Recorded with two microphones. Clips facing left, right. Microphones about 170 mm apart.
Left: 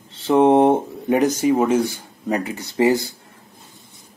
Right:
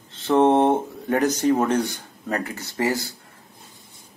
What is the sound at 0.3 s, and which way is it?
Speech, 15° left (ahead or behind).